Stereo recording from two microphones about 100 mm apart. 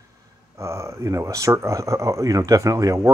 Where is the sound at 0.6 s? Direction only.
30° right (ahead or behind).